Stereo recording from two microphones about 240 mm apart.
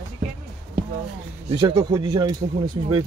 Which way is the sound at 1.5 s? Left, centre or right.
Right.